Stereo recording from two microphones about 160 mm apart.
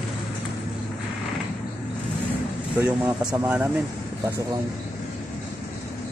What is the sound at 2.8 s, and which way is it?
Speech, 10° right (ahead or behind).